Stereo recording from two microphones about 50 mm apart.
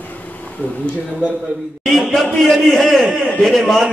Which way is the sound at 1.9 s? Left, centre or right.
Centre.